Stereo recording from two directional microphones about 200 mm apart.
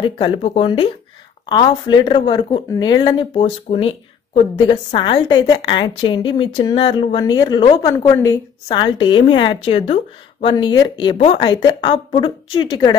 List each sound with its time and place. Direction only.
0.0 s speech: 25° left (ahead or behind)